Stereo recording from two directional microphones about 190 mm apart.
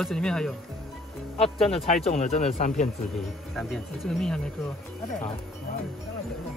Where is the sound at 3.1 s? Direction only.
Centre (ahead or behind).